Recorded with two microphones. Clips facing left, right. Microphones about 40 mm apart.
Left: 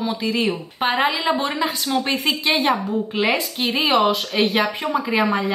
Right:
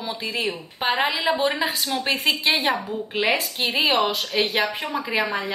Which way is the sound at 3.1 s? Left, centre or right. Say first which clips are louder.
Left 1 dB; centre.